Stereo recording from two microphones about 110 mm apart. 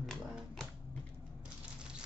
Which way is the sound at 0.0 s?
5° left (ahead or behind).